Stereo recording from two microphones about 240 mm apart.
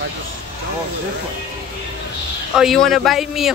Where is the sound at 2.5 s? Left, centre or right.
Centre.